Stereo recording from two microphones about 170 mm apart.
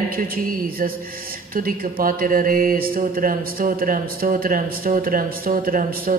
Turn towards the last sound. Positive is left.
turn(degrees=-55)  # may be behind; listen again after turning